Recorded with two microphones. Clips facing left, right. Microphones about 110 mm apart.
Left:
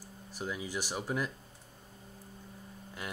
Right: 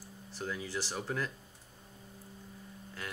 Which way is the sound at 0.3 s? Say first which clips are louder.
Left 1 dB; 15° left (ahead or behind).